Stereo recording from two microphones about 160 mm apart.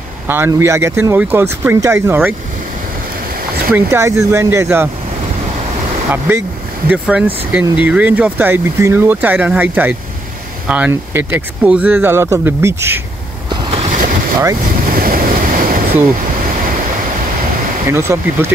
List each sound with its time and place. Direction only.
0.3 s speech: 15° right (ahead or behind)
3.7 s speech: 15° right (ahead or behind)
6.1 s speech: 15° right (ahead or behind)
13.5 s boat: 30° right (ahead or behind)
13.8 s boat: 55° right (ahead or behind)
14.6 s ocean: 60° right (ahead or behind)
17.8 s speech: 15° right (ahead or behind)